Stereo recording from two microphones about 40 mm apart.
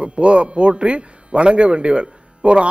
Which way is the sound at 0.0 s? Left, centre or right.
Right.